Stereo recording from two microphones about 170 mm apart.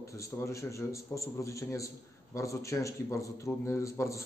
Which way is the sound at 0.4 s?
15° left (ahead or behind).